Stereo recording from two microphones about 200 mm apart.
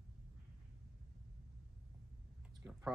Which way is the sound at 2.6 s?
10° right (ahead or behind).